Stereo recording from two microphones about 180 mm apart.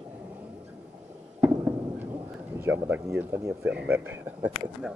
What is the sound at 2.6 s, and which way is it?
Speech, 10° right (ahead or behind).